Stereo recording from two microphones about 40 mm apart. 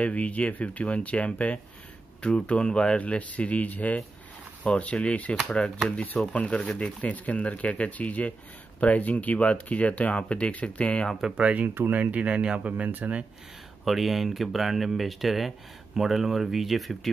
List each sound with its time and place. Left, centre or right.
0.0 s speech: left
3.0 s speech: left
11.3 s speech: right
13.8 s speech: centre